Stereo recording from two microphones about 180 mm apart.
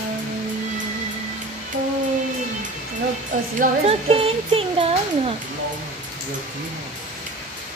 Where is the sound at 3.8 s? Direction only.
30° right (ahead or behind).